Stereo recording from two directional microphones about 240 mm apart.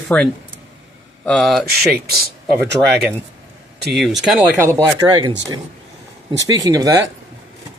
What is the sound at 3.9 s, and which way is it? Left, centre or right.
Speech, centre.